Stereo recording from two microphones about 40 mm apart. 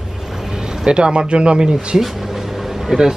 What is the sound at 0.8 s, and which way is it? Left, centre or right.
Speech, right.